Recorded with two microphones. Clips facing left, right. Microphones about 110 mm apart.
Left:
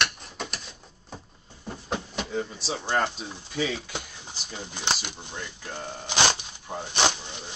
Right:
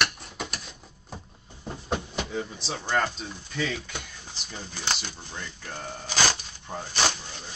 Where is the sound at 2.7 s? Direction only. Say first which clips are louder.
Even; 15° left (ahead or behind).